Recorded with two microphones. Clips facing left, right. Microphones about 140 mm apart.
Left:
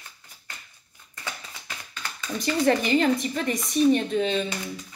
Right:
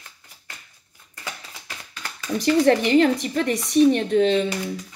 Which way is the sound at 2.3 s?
75° right (ahead or behind).